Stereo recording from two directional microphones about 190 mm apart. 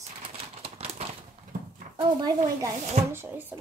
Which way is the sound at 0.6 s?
30° right (ahead or behind).